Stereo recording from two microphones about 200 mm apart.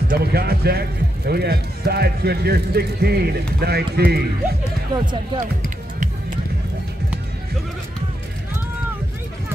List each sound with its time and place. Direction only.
0.1 s speech: 50° right (ahead or behind)
4.9 s speech: 25° right (ahead or behind)